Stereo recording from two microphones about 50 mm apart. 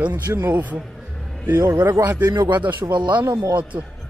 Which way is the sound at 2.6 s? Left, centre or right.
Right.